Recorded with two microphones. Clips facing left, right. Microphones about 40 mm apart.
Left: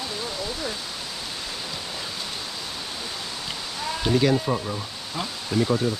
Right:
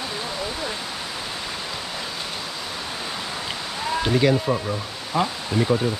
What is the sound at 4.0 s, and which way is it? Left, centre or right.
Speech, centre.